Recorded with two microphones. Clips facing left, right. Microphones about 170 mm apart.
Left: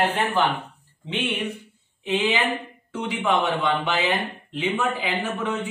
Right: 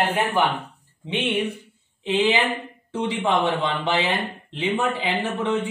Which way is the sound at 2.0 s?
25° right (ahead or behind).